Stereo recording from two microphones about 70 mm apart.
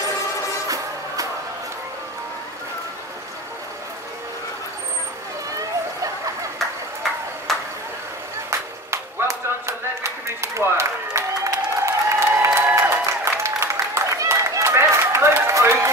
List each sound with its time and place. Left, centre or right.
7.5 s a sound: centre
8.5 s clapping: right
10.2 s applause: right
13.9 s run: right